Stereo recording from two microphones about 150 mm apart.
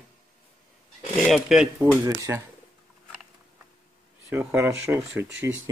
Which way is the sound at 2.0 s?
20° right (ahead or behind).